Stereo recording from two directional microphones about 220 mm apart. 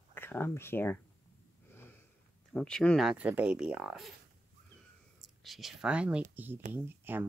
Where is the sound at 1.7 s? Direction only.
10° left (ahead or behind).